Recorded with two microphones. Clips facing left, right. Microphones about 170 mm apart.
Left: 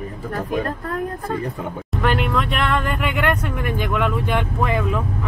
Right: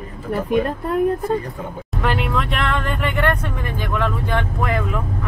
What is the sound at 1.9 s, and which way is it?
Speech, centre (ahead or behind).